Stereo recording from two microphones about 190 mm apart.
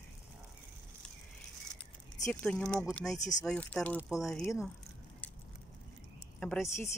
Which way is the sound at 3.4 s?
5° left (ahead or behind).